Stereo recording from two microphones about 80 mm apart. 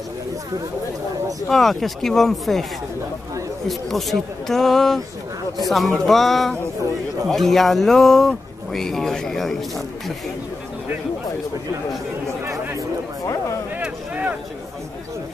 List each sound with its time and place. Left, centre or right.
1.5 s speech: centre
3.6 s speech: centre
13.8 s vehicle: centre